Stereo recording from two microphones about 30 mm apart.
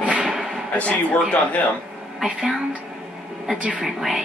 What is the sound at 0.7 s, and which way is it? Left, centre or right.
Speech, left.